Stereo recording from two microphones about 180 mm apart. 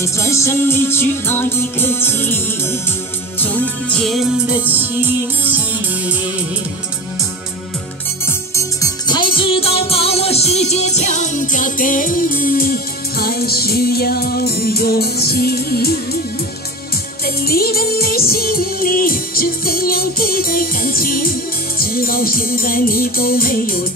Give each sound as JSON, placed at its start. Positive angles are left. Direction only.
{"t": 0.0, "sound": "music", "side_deg": 15}
{"t": 8.3, "sound": "music", "side_deg": 15}
{"t": 17.4, "sound": "music", "side_deg": 60}